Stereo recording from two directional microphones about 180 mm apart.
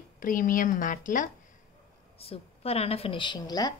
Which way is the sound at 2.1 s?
35° left (ahead or behind).